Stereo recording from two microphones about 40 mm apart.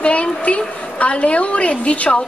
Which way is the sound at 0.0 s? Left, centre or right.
Left.